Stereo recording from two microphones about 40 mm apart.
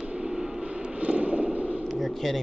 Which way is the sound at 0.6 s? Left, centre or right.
Right.